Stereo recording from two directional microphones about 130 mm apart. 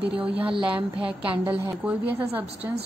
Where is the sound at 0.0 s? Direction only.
10° right (ahead or behind).